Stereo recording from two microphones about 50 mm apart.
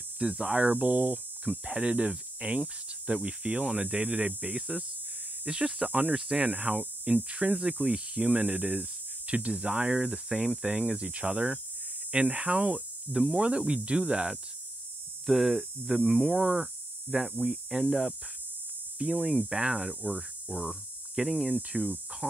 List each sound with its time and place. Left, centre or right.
0.2 s speech: centre
0.7 s hum: right
1.5 s speech: right
13.1 s speech: centre
13.4 s speech: right
15.2 s speech: centre
17.1 s speech: right
17.5 s speech: centre
20.0 s hum: right
21.2 s speech: centre